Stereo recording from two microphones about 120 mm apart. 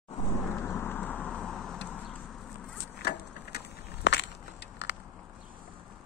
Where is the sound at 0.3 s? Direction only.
20° left (ahead or behind).